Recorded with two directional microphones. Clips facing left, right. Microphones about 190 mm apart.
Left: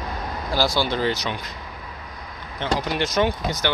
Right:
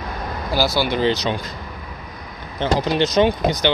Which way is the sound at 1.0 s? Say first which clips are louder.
Right 5 dB; 20° right (ahead or behind).